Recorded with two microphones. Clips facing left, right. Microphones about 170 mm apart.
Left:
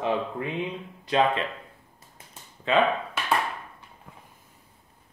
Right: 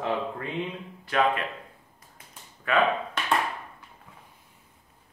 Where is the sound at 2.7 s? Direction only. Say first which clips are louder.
Left 2 dB; 25° left (ahead or behind).